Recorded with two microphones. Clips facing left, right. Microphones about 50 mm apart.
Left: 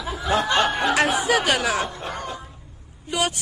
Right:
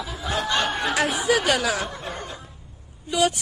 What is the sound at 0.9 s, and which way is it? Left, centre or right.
Speech, left.